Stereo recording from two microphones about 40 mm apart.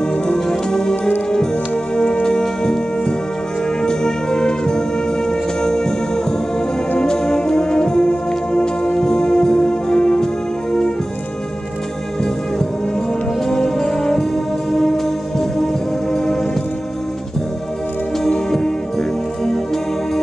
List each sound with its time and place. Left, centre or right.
0.0 s music: left
13.5 s music: centre
18.3 s music: centre